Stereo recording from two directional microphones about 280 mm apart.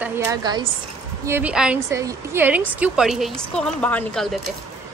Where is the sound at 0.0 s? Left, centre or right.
Centre.